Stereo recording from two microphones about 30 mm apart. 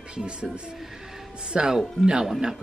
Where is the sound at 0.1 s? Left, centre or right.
Right.